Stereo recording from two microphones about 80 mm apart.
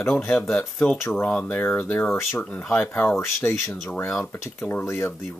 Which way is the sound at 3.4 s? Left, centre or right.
Left.